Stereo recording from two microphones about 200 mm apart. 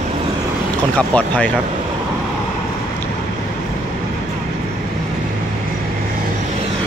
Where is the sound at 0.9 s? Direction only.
5° left (ahead or behind).